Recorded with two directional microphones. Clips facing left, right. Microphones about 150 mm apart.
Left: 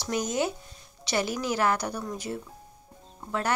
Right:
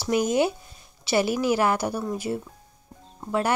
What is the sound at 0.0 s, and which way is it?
Speech, 10° right (ahead or behind).